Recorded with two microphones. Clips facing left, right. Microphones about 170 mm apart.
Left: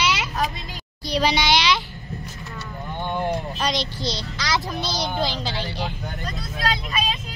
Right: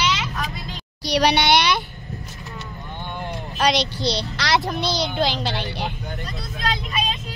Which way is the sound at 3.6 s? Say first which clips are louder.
Right 5 dB; 75° right (ahead or behind).